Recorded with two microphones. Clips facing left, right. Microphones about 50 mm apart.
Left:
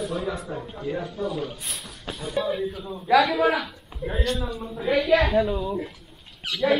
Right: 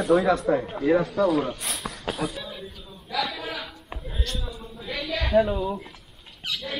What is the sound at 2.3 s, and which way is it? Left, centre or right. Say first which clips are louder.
A woman's voice: left 11 dB; left.